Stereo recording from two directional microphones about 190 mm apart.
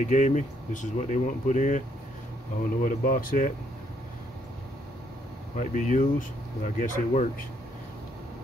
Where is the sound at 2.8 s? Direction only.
45° left (ahead or behind).